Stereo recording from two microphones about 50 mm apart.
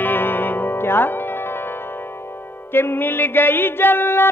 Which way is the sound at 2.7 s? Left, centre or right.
Left.